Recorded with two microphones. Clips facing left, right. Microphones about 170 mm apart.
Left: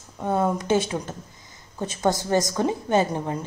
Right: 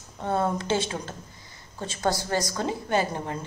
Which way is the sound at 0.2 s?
15° left (ahead or behind).